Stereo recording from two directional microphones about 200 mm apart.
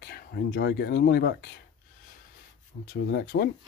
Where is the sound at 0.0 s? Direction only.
50° left (ahead or behind).